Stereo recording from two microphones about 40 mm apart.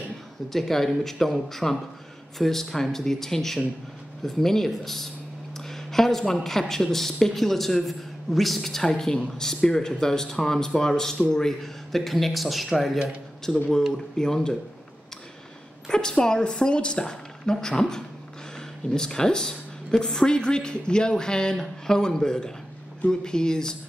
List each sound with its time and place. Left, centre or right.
0.5 s a woman's voice: centre
15.9 s a woman's voice: centre